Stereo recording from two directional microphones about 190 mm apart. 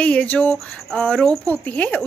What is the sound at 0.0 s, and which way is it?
Speech, 5° left (ahead or behind).